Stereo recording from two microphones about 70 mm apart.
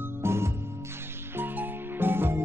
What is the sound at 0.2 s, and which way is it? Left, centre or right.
Music, right.